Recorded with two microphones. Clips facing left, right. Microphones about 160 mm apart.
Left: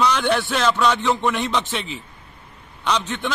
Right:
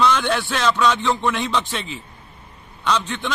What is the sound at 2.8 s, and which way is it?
Speech, 10° left (ahead or behind).